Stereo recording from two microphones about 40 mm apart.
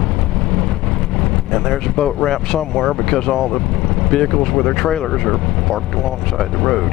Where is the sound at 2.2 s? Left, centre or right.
Centre.